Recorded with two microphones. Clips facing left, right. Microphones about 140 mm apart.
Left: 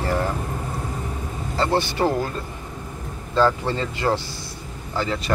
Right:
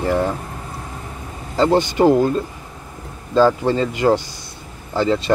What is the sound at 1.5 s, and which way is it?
Speech, 15° right (ahead or behind).